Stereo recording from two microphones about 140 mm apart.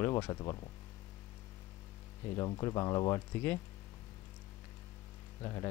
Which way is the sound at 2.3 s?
25° left (ahead or behind).